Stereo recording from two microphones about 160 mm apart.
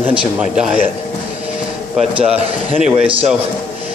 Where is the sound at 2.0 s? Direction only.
5° right (ahead or behind).